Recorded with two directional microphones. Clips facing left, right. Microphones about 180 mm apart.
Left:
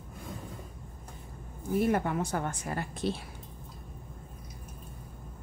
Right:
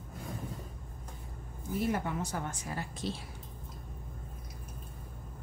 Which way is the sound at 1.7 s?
55° left (ahead or behind).